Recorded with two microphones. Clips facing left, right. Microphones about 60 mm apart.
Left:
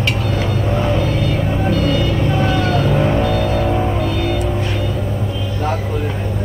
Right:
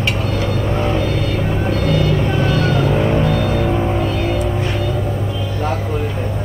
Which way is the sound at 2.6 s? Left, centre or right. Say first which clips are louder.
Even; right.